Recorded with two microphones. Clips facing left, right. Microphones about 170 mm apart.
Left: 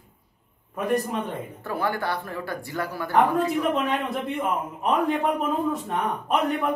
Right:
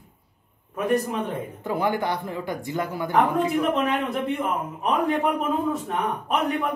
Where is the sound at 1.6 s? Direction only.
20° right (ahead or behind).